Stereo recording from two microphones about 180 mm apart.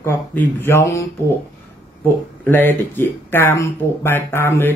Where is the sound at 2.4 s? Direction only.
10° left (ahead or behind).